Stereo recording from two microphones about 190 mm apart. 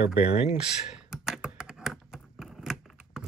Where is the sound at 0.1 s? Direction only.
35° left (ahead or behind).